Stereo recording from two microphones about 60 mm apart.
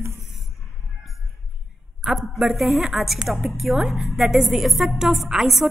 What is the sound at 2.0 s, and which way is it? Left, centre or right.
A woman's voice, centre.